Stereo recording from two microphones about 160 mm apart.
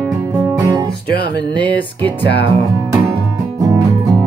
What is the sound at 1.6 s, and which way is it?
Music, 10° left (ahead or behind).